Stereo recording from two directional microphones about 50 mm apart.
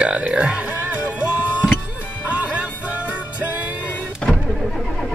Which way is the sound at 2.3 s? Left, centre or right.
Right.